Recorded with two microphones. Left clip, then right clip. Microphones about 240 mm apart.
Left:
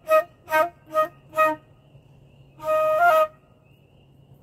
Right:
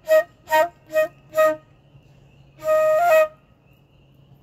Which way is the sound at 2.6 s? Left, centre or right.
Right.